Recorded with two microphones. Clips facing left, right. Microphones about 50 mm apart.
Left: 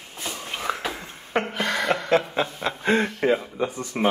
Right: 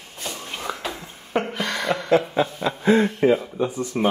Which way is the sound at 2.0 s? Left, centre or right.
Left.